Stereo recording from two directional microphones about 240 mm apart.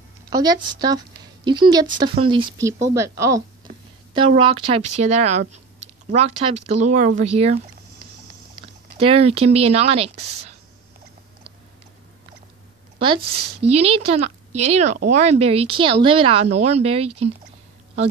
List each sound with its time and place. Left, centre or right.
0.3 s speech: centre
3.7 s a sound: right
4.1 s speech: right
8.9 s speech: right
13.0 s speech: right